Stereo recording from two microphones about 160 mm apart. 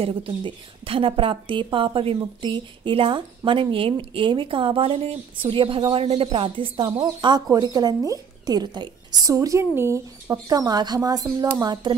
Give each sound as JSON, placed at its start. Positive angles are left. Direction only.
{"t": 0.0, "sound": "a woman's voice", "side_deg": -35}